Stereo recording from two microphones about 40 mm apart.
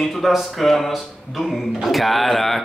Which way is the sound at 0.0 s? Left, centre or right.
Centre.